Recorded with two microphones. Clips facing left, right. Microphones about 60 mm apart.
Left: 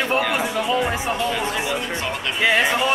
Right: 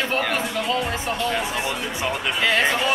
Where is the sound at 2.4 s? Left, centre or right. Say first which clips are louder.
Left 3 dB; centre.